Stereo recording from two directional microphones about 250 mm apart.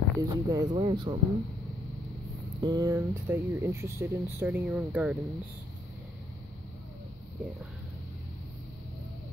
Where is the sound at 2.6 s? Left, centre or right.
Centre.